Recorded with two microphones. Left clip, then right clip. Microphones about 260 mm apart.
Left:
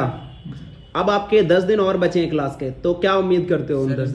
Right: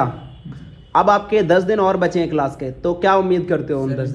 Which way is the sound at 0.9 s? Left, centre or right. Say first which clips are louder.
Right 3 dB; centre.